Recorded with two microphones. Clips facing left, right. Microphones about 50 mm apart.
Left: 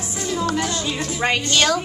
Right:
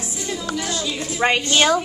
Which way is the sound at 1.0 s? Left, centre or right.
Centre.